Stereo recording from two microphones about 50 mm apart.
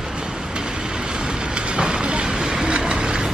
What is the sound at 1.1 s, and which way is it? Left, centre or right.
Train, centre.